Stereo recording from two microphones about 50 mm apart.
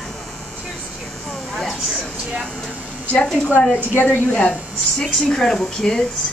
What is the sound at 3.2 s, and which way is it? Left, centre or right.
A woman's voice, centre.